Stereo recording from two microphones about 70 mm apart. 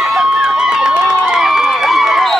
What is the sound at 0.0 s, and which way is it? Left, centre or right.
Run, centre.